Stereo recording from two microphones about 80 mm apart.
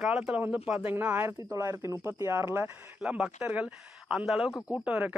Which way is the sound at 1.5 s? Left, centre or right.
Right.